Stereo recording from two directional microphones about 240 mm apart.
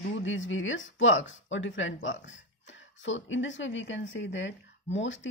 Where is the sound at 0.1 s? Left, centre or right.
Left.